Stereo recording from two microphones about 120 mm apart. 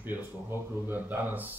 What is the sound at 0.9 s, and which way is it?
Speech, 15° right (ahead or behind).